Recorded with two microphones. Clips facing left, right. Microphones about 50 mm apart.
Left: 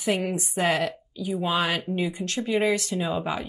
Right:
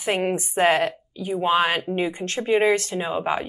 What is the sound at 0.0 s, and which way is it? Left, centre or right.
A woman's voice, right.